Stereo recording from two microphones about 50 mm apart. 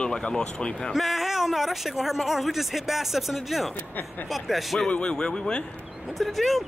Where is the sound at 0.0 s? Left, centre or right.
Centre.